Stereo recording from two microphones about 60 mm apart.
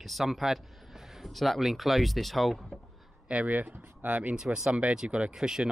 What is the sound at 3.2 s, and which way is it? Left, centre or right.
Speech, right.